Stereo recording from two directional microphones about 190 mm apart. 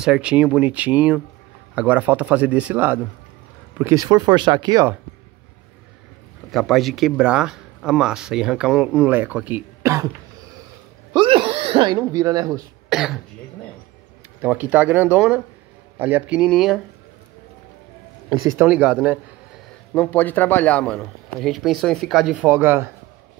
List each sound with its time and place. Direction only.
0.0 s speech: 5° right (ahead or behind)
6.5 s speech: centre (ahead or behind)
11.1 s speech: 30° right (ahead or behind)
12.9 s speech: centre (ahead or behind)
14.4 s speech: 10° right (ahead or behind)
18.6 s speech: 5° right (ahead or behind)
19.9 s speech: 5° left (ahead or behind); by 22.8 s 10° right (ahead or behind)